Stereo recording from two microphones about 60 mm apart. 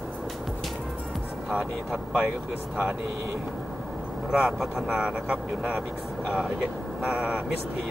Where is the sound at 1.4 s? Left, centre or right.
Centre.